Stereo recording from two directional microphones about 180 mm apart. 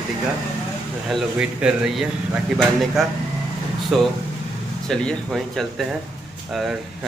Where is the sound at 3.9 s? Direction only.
Centre (ahead or behind).